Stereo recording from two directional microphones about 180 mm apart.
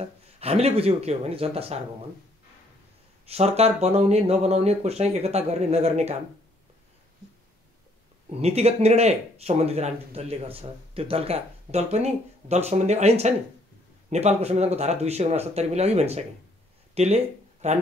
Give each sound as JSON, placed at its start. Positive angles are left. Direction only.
{"t": 0.0, "sound": "speech", "side_deg": -35}
{"t": 3.3, "sound": "speech", "side_deg": -35}
{"t": 8.4, "sound": "speech", "side_deg": -35}